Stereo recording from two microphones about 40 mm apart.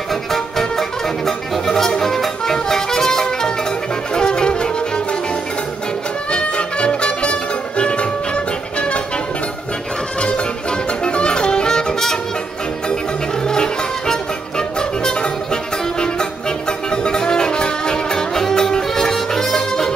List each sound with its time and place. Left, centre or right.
0.1 s music: centre; by 9.0 s left
10.2 s music: left